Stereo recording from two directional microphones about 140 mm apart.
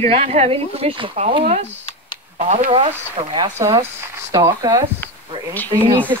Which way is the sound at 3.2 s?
45° right (ahead or behind).